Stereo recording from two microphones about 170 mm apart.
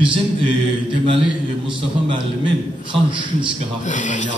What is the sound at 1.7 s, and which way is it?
A man's voice, 30° right (ahead or behind).